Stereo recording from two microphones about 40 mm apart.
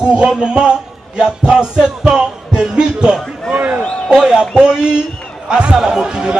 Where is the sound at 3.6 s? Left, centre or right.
Right.